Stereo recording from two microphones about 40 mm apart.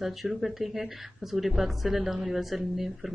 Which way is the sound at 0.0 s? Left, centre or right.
Centre.